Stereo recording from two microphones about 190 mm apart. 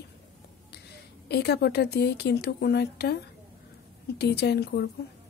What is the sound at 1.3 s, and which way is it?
Speech, 60° left (ahead or behind).